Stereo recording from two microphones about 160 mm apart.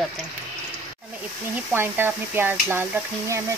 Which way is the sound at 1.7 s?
15° right (ahead or behind).